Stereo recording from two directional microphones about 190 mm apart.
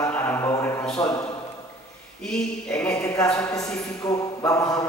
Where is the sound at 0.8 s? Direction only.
5° left (ahead or behind).